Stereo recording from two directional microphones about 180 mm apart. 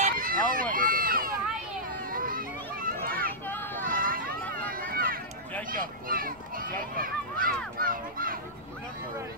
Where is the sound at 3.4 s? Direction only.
10° left (ahead or behind).